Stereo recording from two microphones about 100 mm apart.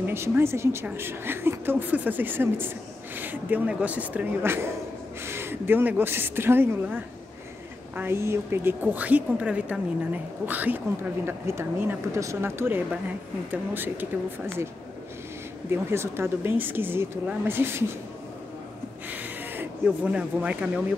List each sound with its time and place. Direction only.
0.1 s a woman's voice: 25° right (ahead or behind)
15.7 s speech: 25° right (ahead or behind)
19.0 s a sound: 20° right (ahead or behind)